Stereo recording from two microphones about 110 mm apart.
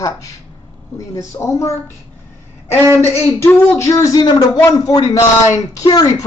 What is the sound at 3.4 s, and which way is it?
Speech, 25° left (ahead or behind).